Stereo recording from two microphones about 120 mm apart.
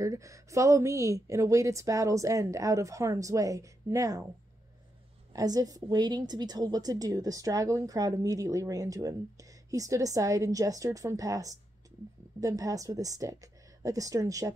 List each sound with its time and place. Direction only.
0.0 s a woman's voice: 25° right (ahead or behind)
5.3 s a woman's voice: 30° right (ahead or behind)